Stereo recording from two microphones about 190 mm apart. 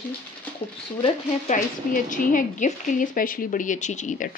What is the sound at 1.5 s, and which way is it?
Speech, 40° left (ahead or behind).